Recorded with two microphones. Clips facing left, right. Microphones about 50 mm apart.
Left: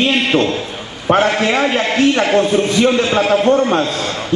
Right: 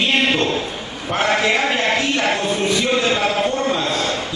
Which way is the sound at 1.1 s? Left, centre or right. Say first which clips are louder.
Left 4 dB; left.